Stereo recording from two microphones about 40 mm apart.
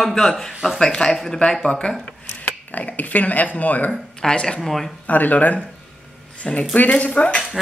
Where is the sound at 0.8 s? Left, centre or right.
Centre.